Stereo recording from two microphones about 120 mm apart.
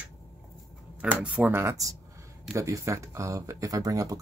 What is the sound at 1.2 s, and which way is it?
Speech, 10° right (ahead or behind).